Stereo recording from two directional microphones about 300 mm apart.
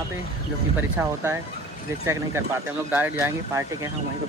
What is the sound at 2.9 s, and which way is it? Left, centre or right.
Speech, centre.